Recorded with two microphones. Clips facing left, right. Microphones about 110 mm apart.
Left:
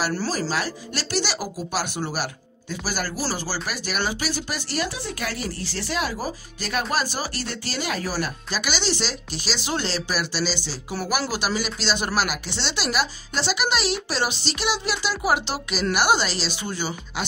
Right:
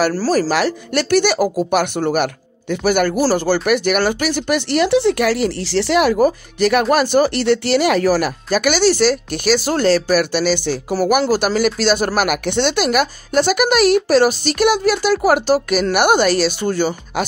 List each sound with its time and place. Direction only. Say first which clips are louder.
0.3 s speech: right 10 dB; 70° right (ahead or behind)
8.5 s speech: right 15 dB; 55° right (ahead or behind)